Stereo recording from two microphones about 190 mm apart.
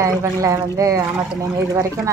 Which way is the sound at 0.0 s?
15° right (ahead or behind).